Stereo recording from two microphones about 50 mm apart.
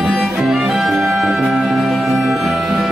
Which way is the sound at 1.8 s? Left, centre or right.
Centre.